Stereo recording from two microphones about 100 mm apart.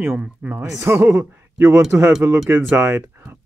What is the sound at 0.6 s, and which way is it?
Speech, 25° right (ahead or behind).